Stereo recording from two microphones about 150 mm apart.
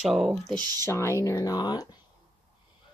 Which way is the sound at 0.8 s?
20° left (ahead or behind).